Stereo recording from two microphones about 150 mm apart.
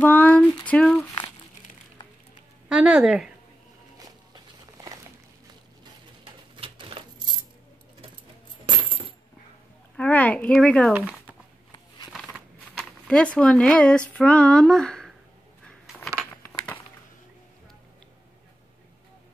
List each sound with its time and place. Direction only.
0.0 s female singing: 10° left (ahead or behind)
0.7 s speech: 5° left (ahead or behind)
2.7 s speech: 5° right (ahead or behind)
6.5 s coin: 35° right (ahead or behind)
8.6 s coin: 35° right (ahead or behind)
9.9 s speech: 10° left (ahead or behind)
12.1 s a sound: 5° right (ahead or behind)
12.7 s speech: 5° left (ahead or behind)